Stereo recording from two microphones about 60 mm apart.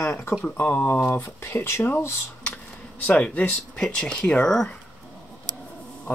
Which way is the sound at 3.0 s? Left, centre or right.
Left.